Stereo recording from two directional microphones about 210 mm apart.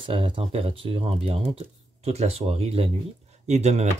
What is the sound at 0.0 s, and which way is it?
Speech, 25° right (ahead or behind).